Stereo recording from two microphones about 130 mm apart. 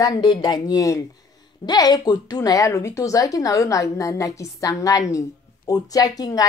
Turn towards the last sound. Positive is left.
turn(degrees=30)  # may be behind; listen again after turning